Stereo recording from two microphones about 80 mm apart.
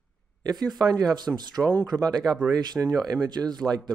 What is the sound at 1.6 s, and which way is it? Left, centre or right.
Speech, centre.